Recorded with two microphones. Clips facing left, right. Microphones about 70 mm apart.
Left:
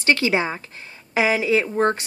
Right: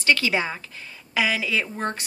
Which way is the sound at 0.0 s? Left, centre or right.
Left.